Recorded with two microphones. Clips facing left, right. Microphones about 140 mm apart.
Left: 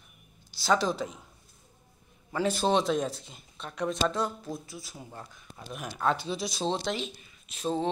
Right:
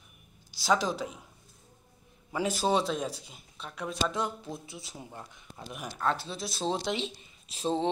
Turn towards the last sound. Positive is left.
turn(degrees=-30)  # may be behind; listen again after turning